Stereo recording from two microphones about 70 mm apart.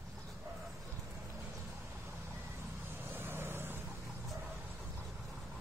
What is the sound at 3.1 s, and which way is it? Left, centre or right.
Vehicle, right.